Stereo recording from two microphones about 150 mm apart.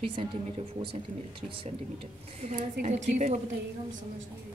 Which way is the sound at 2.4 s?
50° right (ahead or behind).